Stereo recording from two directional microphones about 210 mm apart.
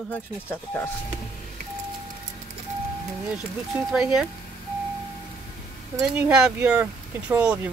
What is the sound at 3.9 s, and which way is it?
Speech, centre (ahead or behind).